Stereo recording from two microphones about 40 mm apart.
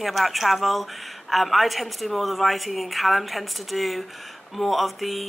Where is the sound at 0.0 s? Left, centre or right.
Centre.